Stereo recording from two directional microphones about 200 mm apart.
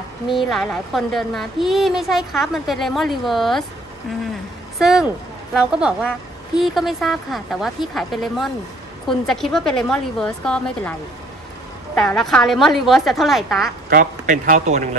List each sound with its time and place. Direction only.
0.3 s a woman's voice: centre (ahead or behind)
4.7 s a woman's voice: centre (ahead or behind)
13.8 s speech: 45° right (ahead or behind)